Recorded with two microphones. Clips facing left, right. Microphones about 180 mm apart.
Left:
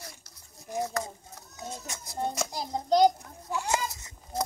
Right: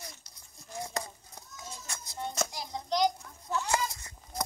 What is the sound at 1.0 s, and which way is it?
Speech, 20° right (ahead or behind).